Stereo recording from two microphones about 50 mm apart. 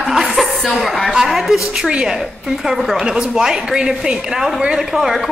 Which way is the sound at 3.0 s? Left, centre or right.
Centre.